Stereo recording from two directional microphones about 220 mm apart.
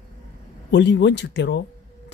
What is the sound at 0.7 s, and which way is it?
Speech, 50° left (ahead or behind).